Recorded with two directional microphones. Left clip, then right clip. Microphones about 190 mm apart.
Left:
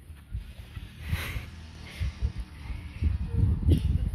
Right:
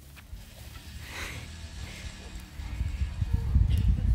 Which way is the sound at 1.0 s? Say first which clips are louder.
Left 1 dB; centre (ahead or behind).